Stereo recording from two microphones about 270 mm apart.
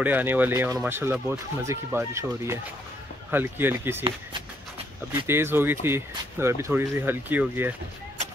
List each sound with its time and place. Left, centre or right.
0.0 s speech: centre
5.2 s speech: centre